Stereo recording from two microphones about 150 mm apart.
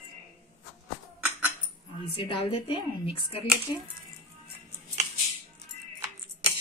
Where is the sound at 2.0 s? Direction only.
40° left (ahead or behind).